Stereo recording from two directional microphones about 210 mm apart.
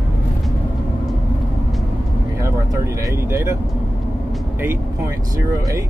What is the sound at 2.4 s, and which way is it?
Vehicle, 15° right (ahead or behind).